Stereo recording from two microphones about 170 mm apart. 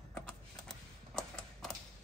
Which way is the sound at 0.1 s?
5° left (ahead or behind).